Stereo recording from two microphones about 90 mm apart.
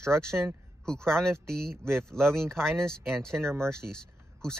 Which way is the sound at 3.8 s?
5° left (ahead or behind).